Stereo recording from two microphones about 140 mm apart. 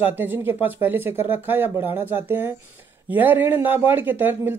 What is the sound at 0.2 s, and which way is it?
Speech, 15° right (ahead or behind).